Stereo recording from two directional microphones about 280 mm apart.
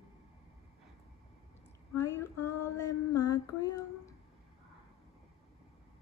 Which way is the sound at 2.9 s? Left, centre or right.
Left.